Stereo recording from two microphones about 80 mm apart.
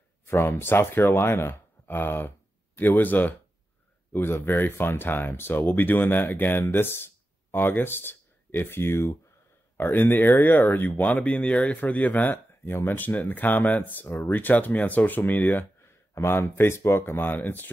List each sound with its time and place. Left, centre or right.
0.3 s speech: left